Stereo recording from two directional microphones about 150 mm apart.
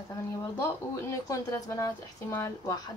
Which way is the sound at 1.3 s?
20° left (ahead or behind).